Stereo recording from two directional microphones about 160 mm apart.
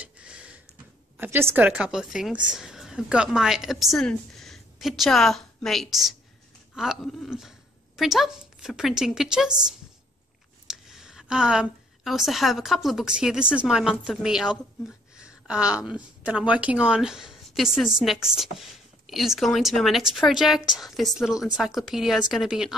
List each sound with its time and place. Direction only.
0.0 s a sound: 5° right (ahead or behind)
1.1 s a woman's voice: 10° right (ahead or behind)
10.7 s a woman's voice: centre (ahead or behind)